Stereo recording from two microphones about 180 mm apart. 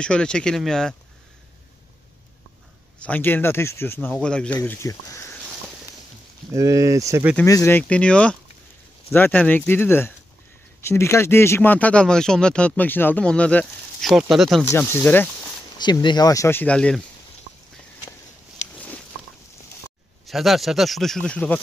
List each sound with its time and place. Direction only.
0.0 s speech: 5° left (ahead or behind)
3.0 s speech: 10° left (ahead or behind)
4.6 s speech: 15° left (ahead or behind)
6.5 s speech: 20° right (ahead or behind)
7.4 s speech: 15° left (ahead or behind); by 14.6 s centre (ahead or behind)
14.6 s speech: 10° left (ahead or behind)
15.8 s speech: 25° left (ahead or behind); by 17.0 s 5° left (ahead or behind)
20.2 s speech: centre (ahead or behind)